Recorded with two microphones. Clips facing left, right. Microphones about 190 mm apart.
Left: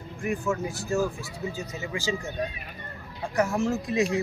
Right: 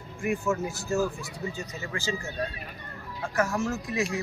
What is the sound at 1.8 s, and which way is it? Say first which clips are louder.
Speech: left 3 dB; 10° left (ahead or behind).